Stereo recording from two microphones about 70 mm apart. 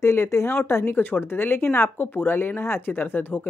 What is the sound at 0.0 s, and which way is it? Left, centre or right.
Speech, left.